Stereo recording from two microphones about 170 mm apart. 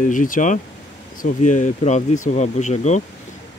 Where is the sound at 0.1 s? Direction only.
50° left (ahead or behind).